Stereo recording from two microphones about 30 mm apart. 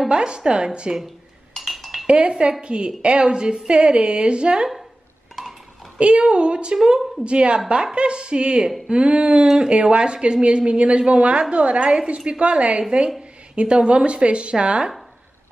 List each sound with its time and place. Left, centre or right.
0.1 s a woman's voice: right
1.6 s dishes: centre
2.2 s a woman's voice: right
5.4 s a sound: centre
5.9 s a woman's voice: right
12.3 s a woman's voice: right